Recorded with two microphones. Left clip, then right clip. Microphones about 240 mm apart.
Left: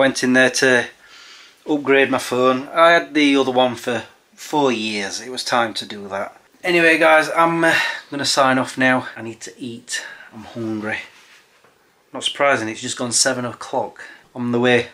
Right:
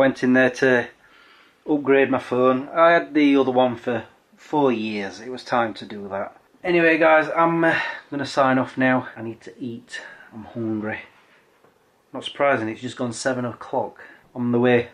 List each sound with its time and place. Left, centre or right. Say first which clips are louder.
0.0 s speech: left 3 dB; centre
10.6 s speech: left 1 dB; centre
12.1 s speech: left 3 dB; centre
13.7 s speech: left 2 dB; right
14.4 s speech: left 2 dB; centre